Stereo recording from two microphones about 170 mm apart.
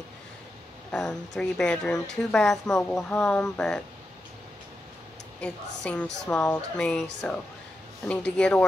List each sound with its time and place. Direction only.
0.9 s speech: 5° left (ahead or behind)
5.4 s a woman's voice: 5° left (ahead or behind)